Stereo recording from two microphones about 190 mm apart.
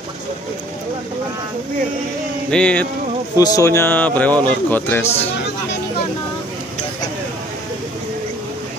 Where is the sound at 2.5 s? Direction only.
5° left (ahead or behind).